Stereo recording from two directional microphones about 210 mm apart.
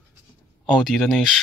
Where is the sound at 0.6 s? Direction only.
5° left (ahead or behind).